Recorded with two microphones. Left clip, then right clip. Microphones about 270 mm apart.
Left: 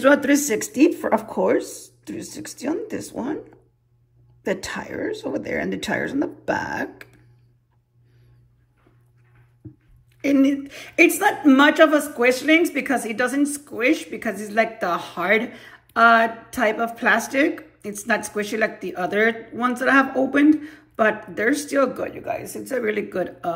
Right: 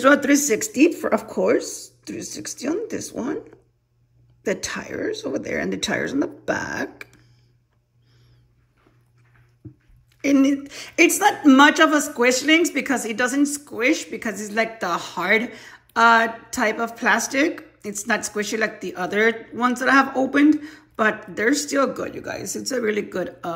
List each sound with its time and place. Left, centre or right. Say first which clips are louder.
0.0 s a woman's voice: even; centre
1.1 s speech: even; left
3.2 s a woman's voice: even; centre
4.4 s speech: even; left
5.5 s a woman's voice: right 1 dB; centre
10.2 s a woman's voice: even; centre